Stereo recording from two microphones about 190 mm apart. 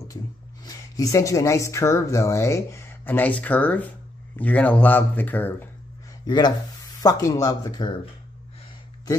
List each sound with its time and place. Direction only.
0.7 s speech: 20° left (ahead or behind)
6.2 s speech: 25° left (ahead or behind)